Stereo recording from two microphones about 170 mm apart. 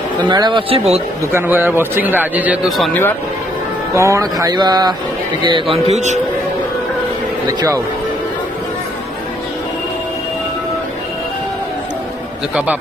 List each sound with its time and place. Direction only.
0.3 s speech: 25° right (ahead or behind)
1.2 s speech: 15° right (ahead or behind)
2.9 s speech: 15° left (ahead or behind)
3.9 s speech: 15° right (ahead or behind); by 6.1 s 40° right (ahead or behind)